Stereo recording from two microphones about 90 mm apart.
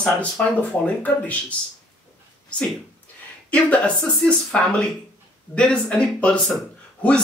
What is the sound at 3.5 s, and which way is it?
Speech, 15° left (ahead or behind).